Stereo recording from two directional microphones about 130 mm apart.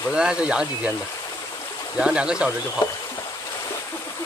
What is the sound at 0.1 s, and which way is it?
Speech, 5° right (ahead or behind).